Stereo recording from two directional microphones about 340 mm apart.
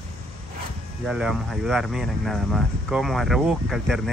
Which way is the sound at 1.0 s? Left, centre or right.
Centre.